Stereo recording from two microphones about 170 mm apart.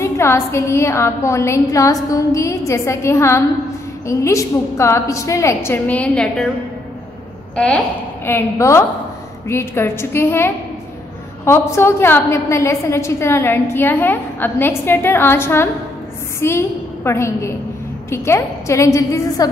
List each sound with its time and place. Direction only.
0.0 s a woman's voice: 15° left (ahead or behind)
7.5 s a woman's voice: 5° left (ahead or behind)